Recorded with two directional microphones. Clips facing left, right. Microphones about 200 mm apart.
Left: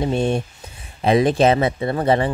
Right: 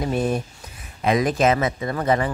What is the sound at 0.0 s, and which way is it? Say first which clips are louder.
Speech: left 3 dB; 30° left (ahead or behind).